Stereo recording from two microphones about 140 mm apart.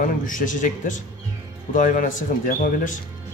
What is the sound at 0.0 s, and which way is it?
Speech, 75° left (ahead or behind).